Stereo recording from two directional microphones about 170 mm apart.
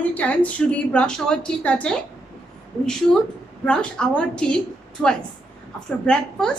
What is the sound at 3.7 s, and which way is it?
A woman's voice, 5° left (ahead or behind).